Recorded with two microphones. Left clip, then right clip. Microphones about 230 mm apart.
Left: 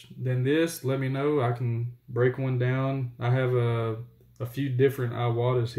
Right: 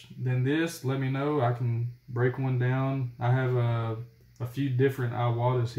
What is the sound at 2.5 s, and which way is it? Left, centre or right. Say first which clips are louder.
Speech: left 2 dB; centre.